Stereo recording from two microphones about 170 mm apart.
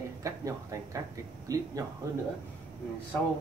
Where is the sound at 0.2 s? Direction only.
20° right (ahead or behind).